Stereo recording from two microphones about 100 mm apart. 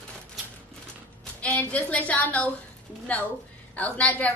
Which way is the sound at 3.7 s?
15° left (ahead or behind).